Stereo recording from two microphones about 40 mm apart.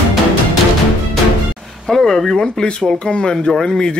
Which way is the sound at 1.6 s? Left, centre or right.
Centre.